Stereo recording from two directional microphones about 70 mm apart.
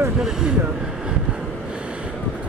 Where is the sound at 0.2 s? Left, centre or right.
Centre.